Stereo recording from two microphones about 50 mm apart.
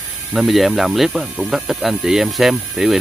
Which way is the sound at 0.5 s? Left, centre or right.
Centre.